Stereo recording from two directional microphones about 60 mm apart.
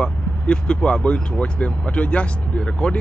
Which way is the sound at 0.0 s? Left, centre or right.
Centre.